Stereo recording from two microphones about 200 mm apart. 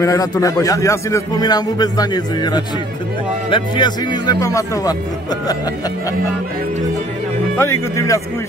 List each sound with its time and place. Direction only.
0.0 s speech: 15° left (ahead or behind)
7.5 s speech: 10° left (ahead or behind)